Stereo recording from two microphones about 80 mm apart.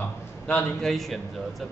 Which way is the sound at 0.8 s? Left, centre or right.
Centre.